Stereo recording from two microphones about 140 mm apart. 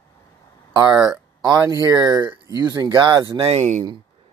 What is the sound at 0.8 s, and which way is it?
Speech, 30° right (ahead or behind).